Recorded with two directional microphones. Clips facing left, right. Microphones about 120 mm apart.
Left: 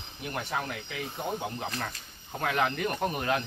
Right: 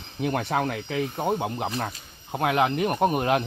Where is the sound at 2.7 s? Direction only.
20° right (ahead or behind).